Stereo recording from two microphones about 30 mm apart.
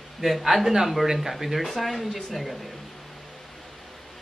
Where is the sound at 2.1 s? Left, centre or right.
Centre.